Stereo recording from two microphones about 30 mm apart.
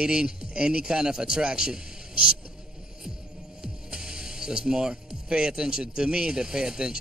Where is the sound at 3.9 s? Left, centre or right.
Right.